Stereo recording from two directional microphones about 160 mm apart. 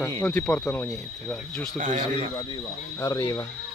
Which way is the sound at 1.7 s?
50° right (ahead or behind).